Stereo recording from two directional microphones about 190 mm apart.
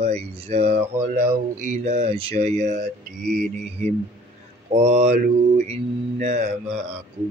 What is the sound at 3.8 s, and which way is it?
Mantra, 35° right (ahead or behind).